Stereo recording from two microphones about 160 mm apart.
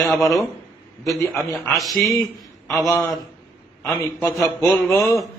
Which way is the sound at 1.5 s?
Centre (ahead or behind).